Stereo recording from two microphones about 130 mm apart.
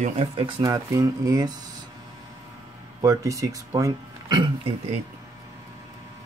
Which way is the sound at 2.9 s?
25° right (ahead or behind).